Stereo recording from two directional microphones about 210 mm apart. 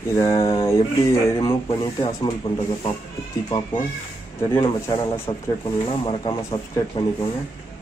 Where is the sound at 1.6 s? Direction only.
25° left (ahead or behind).